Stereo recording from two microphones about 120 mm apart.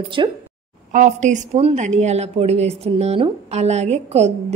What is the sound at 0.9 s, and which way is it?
A woman's voice, 85° right.